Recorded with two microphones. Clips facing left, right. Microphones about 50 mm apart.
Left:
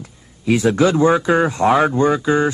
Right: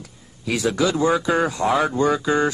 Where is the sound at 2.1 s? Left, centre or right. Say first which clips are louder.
Left 3 dB; centre.